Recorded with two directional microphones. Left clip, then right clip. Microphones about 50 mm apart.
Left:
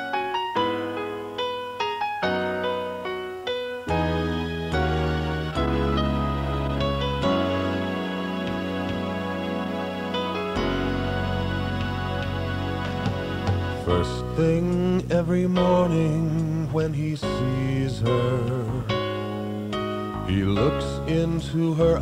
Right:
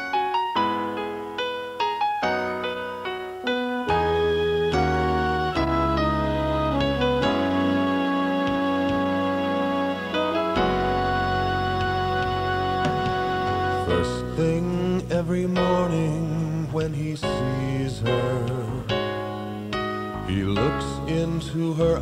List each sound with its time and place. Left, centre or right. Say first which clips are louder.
13.8 s music: right 1 dB; left
20.3 s music: left 1 dB; left